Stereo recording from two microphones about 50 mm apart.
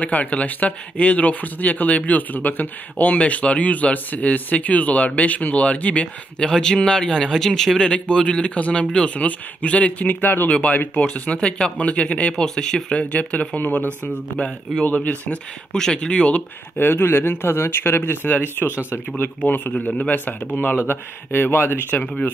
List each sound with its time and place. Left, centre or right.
0.0 s speech: left
6.4 s speech: centre; by 10.5 s left
10.5 s speech: left
12.9 s speech: left
15.7 s speech: centre
16.7 s speech: left
21.9 s speech: left